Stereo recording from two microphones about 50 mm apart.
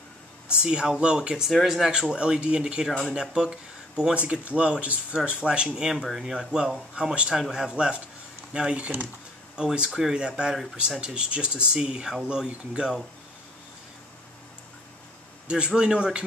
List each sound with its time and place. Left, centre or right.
0.6 s speech: centre
1.5 s speech: centre
1.9 s speech: centre
9.8 s speech: centre
10.1 s speech: centre
12.4 s speech: right
15.4 s speech: centre